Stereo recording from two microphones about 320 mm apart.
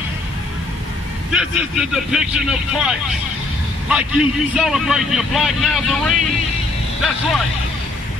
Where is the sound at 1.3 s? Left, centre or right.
Centre.